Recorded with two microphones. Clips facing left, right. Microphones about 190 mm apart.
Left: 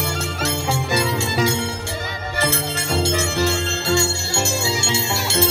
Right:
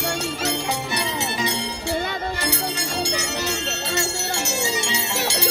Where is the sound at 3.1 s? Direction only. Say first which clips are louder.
Left 6 dB; 50° left (ahead or behind).